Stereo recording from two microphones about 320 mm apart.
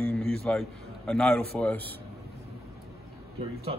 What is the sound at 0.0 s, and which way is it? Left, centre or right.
A man's voice, centre.